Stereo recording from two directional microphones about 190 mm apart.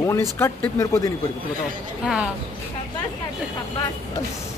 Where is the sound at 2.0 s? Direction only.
5° right (ahead or behind).